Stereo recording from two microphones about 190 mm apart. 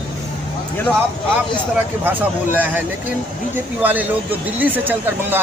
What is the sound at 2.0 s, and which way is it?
Speech, 10° right (ahead or behind).